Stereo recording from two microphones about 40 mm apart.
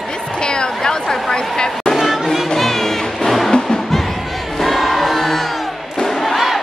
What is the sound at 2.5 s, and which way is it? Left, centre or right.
Music, centre.